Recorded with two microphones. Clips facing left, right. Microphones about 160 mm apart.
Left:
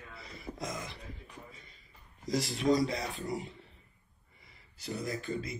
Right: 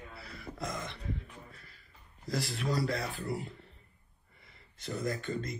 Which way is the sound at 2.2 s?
Centre (ahead or behind).